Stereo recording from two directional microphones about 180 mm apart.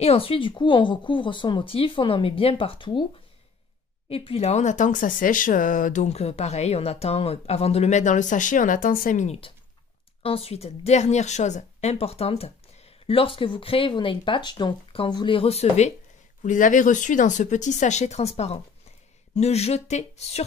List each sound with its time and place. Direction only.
0.0 s speech: 35° left (ahead or behind)
4.1 s a woman's voice: 30° left (ahead or behind)
16.4 s a woman's voice: 45° left (ahead or behind)